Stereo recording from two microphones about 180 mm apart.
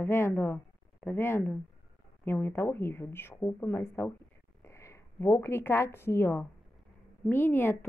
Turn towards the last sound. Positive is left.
turn(degrees=15)  # may be behind; listen again after turning